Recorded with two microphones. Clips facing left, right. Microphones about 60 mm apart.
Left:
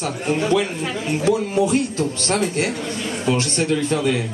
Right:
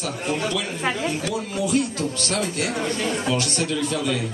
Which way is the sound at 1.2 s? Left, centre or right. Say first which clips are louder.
Left 7 dB; left.